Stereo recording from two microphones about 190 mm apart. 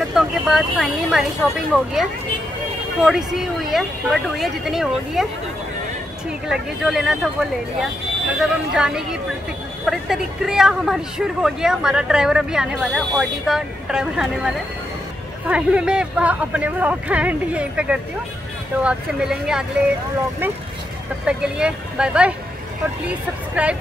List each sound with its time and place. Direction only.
0.1 s speech: centre (ahead or behind)
6.4 s speech: 5° right (ahead or behind)
21.3 s speech: 5° right (ahead or behind)